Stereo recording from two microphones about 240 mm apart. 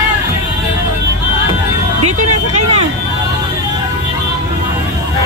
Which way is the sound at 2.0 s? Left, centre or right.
Right.